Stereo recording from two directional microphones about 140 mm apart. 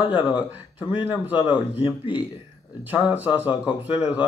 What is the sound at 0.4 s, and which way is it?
Speech, 10° right (ahead or behind).